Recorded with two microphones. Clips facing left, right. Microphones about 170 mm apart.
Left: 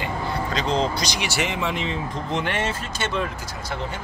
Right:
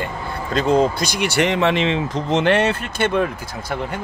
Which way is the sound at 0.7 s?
50° right (ahead or behind).